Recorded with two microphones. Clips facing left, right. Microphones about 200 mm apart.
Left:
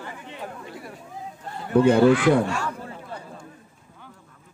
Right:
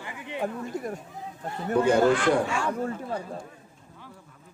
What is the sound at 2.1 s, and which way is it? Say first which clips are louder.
Speech: left 4 dB; 5° left (ahead or behind).